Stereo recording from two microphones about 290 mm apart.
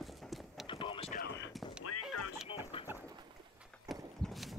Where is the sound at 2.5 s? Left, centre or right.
Centre.